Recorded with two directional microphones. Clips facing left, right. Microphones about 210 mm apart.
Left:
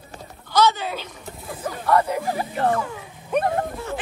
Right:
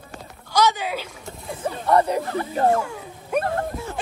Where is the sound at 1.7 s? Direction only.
30° right (ahead or behind).